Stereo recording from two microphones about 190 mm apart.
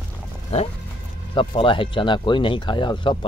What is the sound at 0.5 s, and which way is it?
Speech, 35° left (ahead or behind).